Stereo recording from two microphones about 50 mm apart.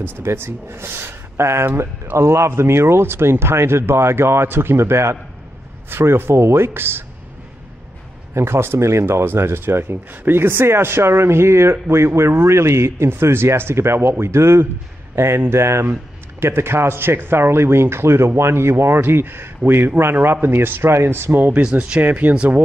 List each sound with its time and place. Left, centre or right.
0.0 s speech: right
8.4 s speech: right
9.2 s speech: right
21.5 s speech: right
22.0 s speech: right
22.3 s speech: right